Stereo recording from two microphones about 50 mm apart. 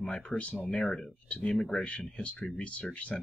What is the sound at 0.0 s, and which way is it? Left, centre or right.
Speech, centre.